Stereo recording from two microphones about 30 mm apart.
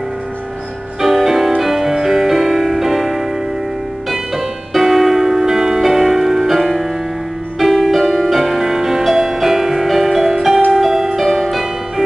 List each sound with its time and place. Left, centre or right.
1.0 s music: centre
4.7 s music: centre